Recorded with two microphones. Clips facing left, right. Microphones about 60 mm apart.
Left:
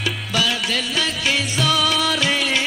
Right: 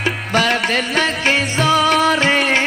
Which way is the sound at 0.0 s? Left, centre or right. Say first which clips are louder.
Right 5 dB; right.